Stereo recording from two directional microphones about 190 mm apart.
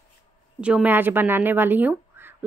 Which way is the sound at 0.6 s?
5° right (ahead or behind).